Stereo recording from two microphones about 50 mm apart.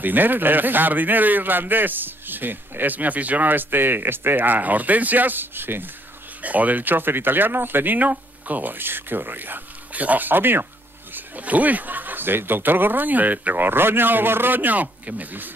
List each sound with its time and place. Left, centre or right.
0.0 s a man's voice: right
6.4 s a man's voice: right
11.1 s a man's voice: right
13.7 s a man's voice: right